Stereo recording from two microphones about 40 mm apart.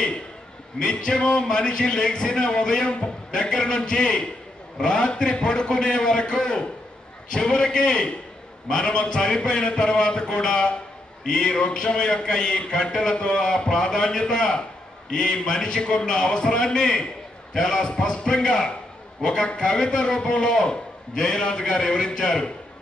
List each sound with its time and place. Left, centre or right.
0.7 s a man's voice: left